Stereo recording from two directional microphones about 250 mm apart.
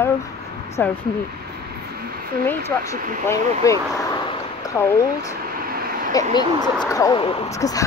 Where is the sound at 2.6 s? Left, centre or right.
Centre.